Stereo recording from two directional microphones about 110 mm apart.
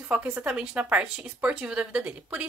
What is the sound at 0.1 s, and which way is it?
A woman's voice, 15° right (ahead or behind).